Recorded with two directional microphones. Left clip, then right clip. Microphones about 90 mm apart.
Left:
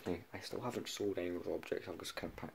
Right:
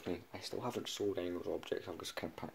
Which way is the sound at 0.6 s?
15° right (ahead or behind).